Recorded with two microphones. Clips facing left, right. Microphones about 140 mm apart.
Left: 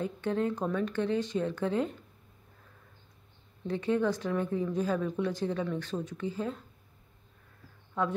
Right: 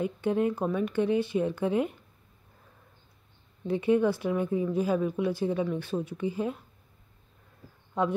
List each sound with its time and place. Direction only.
0.0 s speech: 15° right (ahead or behind)
3.6 s speech: 10° right (ahead or behind)
8.0 s speech: 15° right (ahead or behind)